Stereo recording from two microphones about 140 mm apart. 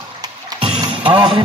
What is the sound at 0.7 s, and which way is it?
Music, 35° right (ahead or behind).